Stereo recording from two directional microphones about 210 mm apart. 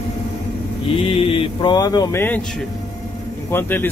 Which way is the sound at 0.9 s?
25° left (ahead or behind).